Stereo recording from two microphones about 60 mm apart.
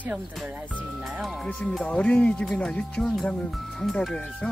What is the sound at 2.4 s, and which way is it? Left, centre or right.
Speech, centre.